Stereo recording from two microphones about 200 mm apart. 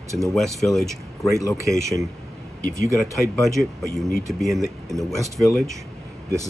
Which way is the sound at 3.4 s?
15° right (ahead or behind).